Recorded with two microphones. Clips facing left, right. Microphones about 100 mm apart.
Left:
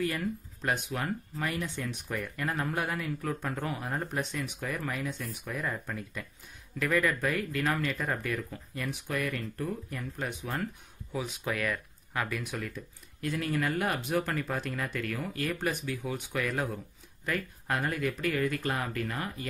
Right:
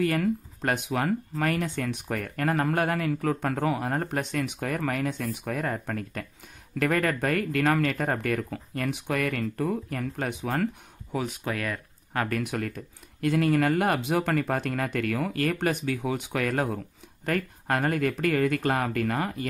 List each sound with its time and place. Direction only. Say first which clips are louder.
0.0 s speech: right 7 dB; 75° right (ahead or behind); by 10.7 s 90° right
11.4 s speech: right 1 dB; 35° right (ahead or behind)
12.1 s speech: right 6 dB; 50° right (ahead or behind); by 19.3 s 80° right